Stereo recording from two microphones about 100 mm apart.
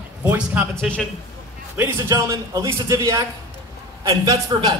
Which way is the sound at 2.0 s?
30° right (ahead or behind).